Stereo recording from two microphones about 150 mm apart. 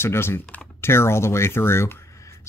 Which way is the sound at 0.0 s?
15° left (ahead or behind).